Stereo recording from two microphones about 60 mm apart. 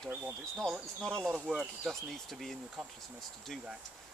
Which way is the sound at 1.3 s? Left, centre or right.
Centre.